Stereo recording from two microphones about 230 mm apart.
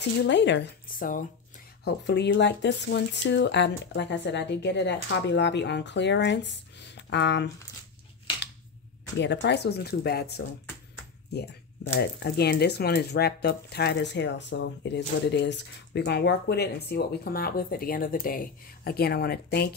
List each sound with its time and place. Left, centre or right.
0.2 s speech: left
1.9 s speech: left
9.2 s speech: left
12.0 s speech: left